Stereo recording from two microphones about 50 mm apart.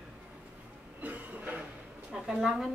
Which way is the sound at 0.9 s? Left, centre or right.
Right.